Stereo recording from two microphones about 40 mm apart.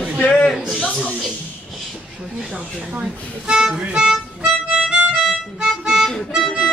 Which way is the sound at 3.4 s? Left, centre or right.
Centre.